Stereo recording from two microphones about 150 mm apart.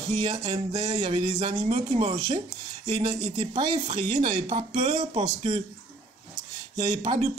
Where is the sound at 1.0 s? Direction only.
40° right (ahead or behind).